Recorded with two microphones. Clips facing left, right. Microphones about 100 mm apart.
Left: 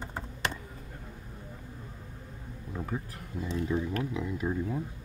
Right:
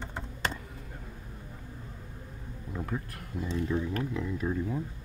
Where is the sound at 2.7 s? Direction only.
5° left (ahead or behind).